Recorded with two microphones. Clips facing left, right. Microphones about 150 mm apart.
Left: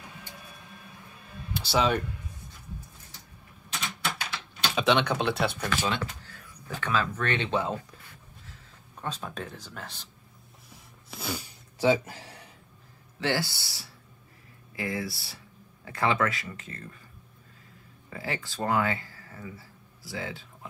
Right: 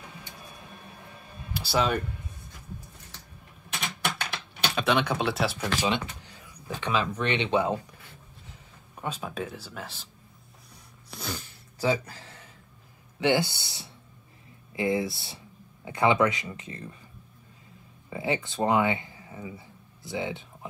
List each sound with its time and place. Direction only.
1.5 s speech: centre (ahead or behind)
4.7 s speech: 5° right (ahead or behind)
5.9 s speech: 20° right (ahead or behind)
10.7 s a sound: 5° left (ahead or behind)
11.8 s a sound: 20° left (ahead or behind)
13.2 s speech: 20° right (ahead or behind)
18.1 s speech: 20° right (ahead or behind)